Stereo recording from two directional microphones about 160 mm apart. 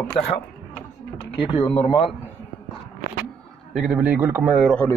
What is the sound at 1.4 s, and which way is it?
Speech, 30° left (ahead or behind).